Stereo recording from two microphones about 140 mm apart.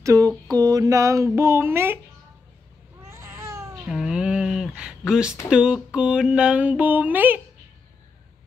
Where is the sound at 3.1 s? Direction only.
20° right (ahead or behind).